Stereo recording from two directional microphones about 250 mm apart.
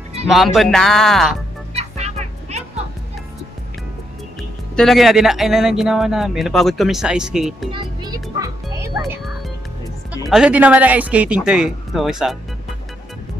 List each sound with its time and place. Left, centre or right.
0.3 s speech: centre
1.7 s music: right
4.4 s speech: centre
7.7 s music: centre
10.3 s speech: centre